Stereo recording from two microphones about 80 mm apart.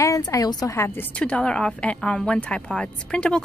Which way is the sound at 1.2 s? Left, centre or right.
Centre.